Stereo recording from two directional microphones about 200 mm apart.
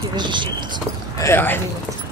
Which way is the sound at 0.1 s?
25° right (ahead or behind).